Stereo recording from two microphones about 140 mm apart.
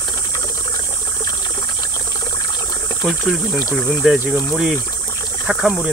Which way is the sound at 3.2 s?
20° left (ahead or behind).